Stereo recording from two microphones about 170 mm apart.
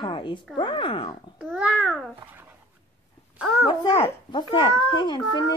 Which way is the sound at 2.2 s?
10° right (ahead or behind).